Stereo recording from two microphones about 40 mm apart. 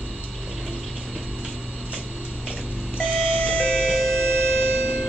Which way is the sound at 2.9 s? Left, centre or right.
Right.